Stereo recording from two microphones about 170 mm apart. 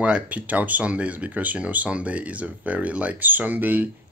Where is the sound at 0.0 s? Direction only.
5° right (ahead or behind).